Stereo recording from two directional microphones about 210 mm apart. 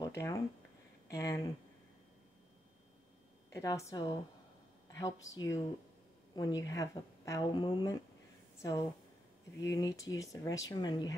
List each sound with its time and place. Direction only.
0.0 s a sound: 15° left (ahead or behind)
1.1 s a woman's voice: 15° left (ahead or behind)
3.4 s a woman's voice: 15° left (ahead or behind)
9.7 s a woman's voice: 15° left (ahead or behind)